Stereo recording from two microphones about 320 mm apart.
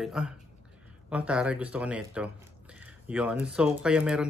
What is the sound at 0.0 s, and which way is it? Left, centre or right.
Speech, centre.